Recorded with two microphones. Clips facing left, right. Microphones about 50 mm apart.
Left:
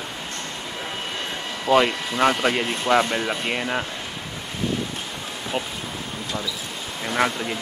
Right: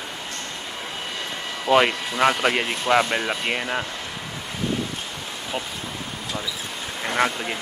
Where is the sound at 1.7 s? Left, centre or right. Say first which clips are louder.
Even; centre.